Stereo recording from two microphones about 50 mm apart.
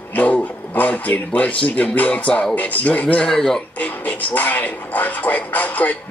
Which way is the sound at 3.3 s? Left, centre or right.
Centre.